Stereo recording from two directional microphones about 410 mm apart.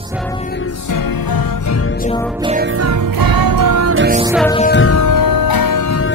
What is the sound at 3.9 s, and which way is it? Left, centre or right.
Music, right.